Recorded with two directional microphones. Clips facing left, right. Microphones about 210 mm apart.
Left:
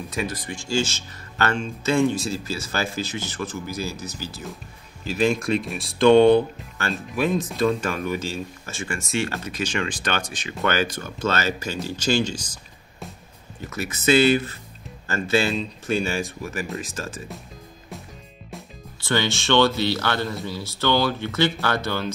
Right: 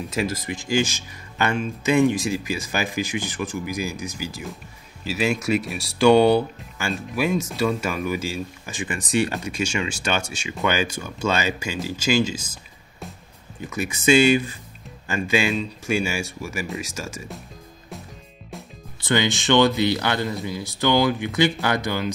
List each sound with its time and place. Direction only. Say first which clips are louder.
0.5 s speech: right 2 dB; 15° right (ahead or behind)
13.7 s speech: right 2 dB; 15° right (ahead or behind)
18.9 s speech: right 2 dB; 20° right (ahead or behind)